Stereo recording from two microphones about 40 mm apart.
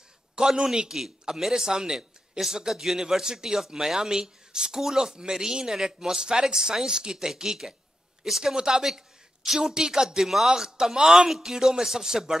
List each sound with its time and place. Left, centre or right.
0.5 s a man's voice: centre
8.5 s a man's voice: centre